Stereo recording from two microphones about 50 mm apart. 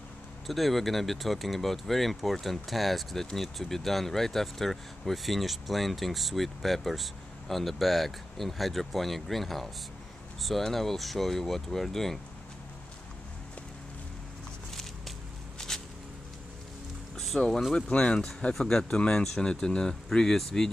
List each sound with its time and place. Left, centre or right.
0.5 s speech: centre
14.7 s walk: centre
17.3 s speech: centre
17.7 s speech: left
19.2 s speech: centre